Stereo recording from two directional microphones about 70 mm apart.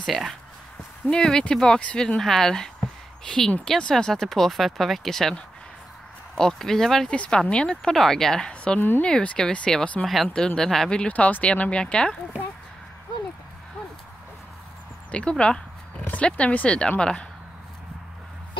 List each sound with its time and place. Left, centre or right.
1.1 s speech: centre
10.0 s speech: centre
15.0 s speech: centre